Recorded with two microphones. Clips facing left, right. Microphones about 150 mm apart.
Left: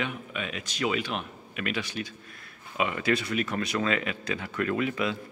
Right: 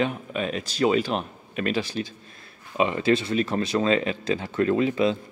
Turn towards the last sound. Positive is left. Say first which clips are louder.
# right 6 dB
turn(degrees=-30)  # may be behind; listen again after turning